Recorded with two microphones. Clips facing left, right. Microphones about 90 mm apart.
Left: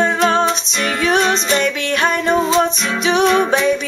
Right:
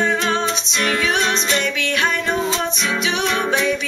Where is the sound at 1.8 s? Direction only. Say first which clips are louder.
Left 3 dB; 40° left (ahead or behind).